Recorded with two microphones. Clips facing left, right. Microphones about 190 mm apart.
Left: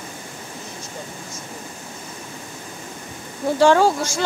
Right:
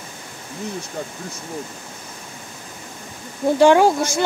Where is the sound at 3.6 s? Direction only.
15° right (ahead or behind).